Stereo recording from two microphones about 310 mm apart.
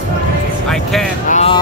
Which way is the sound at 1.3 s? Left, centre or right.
Centre.